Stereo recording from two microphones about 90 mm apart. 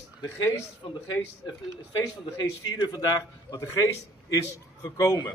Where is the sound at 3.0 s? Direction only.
40° left (ahead or behind).